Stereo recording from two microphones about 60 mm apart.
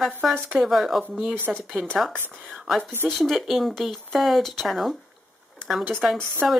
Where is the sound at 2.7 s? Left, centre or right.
Centre.